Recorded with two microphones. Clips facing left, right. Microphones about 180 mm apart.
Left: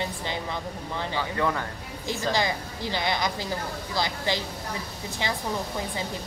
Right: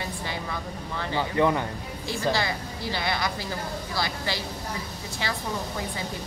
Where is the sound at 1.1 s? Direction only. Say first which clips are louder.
Right 5 dB; 20° right (ahead or behind).